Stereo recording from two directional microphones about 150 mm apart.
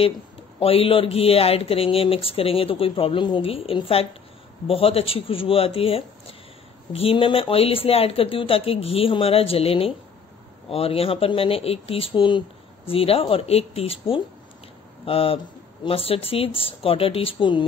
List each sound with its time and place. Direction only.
0.6 s speech: 40° left (ahead or behind)